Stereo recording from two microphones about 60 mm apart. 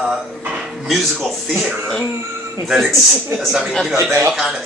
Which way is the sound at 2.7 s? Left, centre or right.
Centre.